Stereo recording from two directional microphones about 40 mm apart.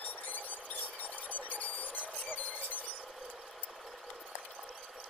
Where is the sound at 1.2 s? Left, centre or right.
Left.